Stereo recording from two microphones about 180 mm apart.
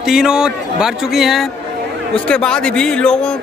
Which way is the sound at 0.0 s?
5° right (ahead or behind).